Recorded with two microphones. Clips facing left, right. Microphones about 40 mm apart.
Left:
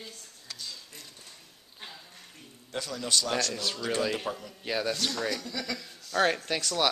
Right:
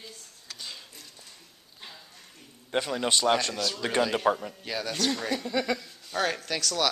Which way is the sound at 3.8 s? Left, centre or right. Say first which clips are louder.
Right 6 dB; right.